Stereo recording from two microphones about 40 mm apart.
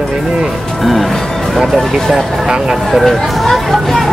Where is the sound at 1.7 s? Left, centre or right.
Centre.